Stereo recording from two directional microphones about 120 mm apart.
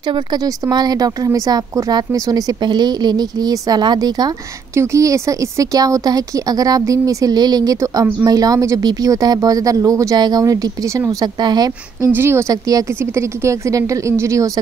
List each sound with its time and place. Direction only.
0.1 s a woman's voice: 35° right (ahead or behind)
12.1 s a woman's voice: 20° right (ahead or behind)